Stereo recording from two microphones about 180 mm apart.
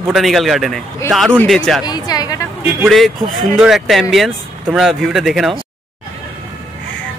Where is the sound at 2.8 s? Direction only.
Centre (ahead or behind).